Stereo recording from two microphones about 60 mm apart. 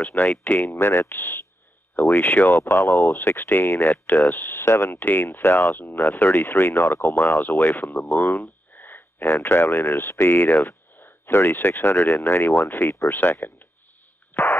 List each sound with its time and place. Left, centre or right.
0.4 s speech: left
0.7 s speech: left
2.0 s speech: left
3.1 s speech: left
3.4 s speech: left
4.3 s speech: left
9.9 s speech: left
10.3 s speech: left
11.0 s a sound: left
11.8 s speech: left
14.3 s a sound: left